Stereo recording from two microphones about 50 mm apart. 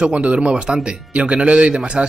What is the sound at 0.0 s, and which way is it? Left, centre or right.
Speech, right.